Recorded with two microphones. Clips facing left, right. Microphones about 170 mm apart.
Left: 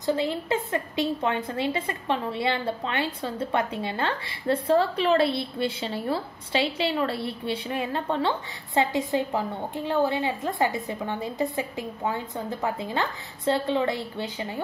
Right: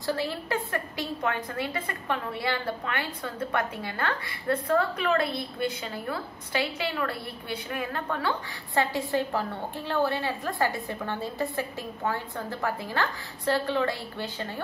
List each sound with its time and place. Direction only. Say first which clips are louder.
0.0 s a woman's voice: left 4 dB; 20° left (ahead or behind)